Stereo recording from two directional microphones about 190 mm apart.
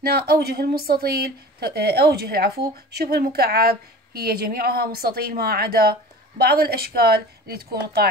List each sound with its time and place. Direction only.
0.0 s a woman's voice: 55° right (ahead or behind)